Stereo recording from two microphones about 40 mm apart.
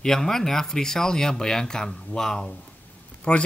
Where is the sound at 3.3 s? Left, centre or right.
Left.